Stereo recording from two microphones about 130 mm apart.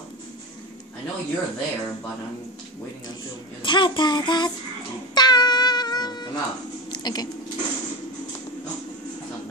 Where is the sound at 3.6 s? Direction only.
35° left (ahead or behind).